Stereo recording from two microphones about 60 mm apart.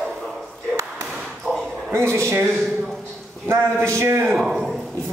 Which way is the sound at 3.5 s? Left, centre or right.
Right.